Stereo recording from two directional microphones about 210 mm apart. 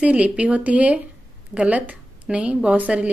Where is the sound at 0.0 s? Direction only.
5° right (ahead or behind).